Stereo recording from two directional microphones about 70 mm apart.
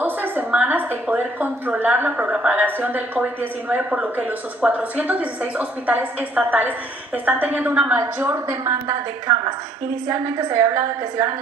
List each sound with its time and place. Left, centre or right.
0.0 s a sound: right
0.5 s a woman's voice: right
7.9 s a woman's voice: right
10.0 s a woman's voice: right